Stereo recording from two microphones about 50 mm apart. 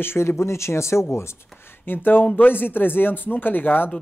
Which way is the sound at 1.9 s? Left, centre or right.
Left.